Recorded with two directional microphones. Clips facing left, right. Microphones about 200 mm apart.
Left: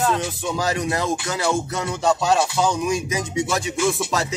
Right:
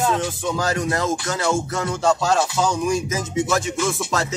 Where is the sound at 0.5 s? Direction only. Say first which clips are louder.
Left 1 dB; 20° left (ahead or behind).